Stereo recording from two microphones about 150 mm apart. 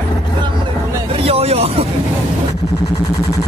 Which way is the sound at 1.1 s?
40° right (ahead or behind).